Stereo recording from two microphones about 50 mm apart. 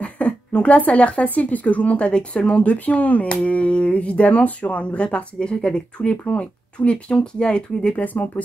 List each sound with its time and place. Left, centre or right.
0.0 s speech: left
8.0 s speech: left